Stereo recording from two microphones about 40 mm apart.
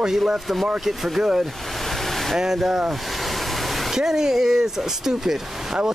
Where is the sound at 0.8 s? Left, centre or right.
Centre.